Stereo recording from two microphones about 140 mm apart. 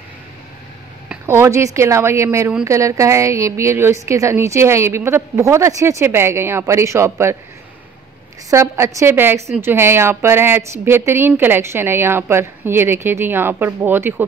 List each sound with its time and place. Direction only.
1.0 s a woman's voice: 20° right (ahead or behind)
8.5 s a woman's voice: 20° right (ahead or behind)